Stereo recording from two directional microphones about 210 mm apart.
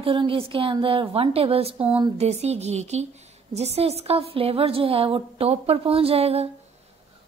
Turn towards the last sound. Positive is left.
turn(degrees=-30)  # may be behind; listen again after turning